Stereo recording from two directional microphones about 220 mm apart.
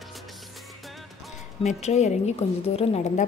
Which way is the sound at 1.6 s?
30° left (ahead or behind).